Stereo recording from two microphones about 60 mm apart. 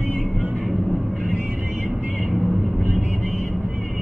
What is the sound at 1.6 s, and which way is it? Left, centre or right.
Music, right.